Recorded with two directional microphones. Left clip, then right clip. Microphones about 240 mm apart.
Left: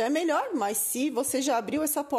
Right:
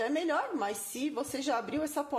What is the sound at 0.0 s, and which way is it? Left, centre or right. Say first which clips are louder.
Speech: left 5 dB; left.